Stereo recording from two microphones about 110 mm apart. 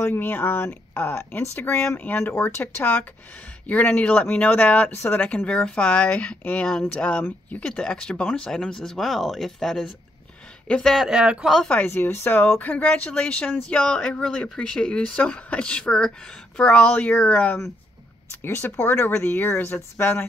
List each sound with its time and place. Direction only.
0.0 s speech: 20° left (ahead or behind); by 11.7 s centre (ahead or behind)
11.7 s speech: 15° left (ahead or behind)
18.4 s speech: 20° left (ahead or behind)